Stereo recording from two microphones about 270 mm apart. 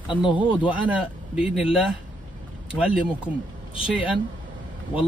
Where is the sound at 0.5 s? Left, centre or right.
Centre.